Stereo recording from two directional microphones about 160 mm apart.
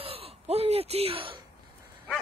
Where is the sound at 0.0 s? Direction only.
35° right (ahead or behind).